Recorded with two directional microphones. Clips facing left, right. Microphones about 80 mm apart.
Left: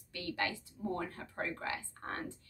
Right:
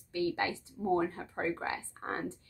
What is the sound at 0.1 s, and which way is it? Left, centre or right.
Speech, right.